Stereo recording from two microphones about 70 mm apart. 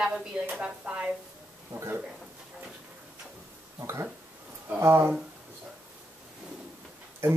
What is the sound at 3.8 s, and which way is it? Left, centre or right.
Speech, right.